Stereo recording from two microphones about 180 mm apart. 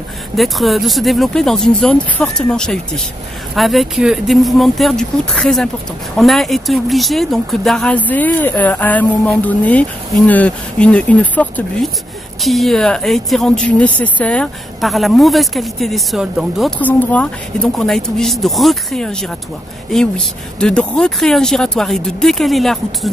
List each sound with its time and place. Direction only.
0.4 s a woman's voice: centre (ahead or behind)